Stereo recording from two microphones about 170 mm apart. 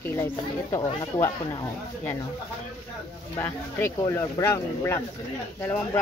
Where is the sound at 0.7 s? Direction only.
20° left (ahead or behind).